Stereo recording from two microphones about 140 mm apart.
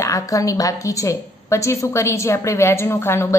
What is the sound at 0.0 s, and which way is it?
A woman's voice, 25° left (ahead or behind).